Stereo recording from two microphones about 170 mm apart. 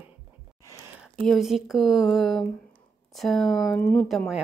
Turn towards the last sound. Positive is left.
turn(degrees=0)  # may be behind; listen again after turning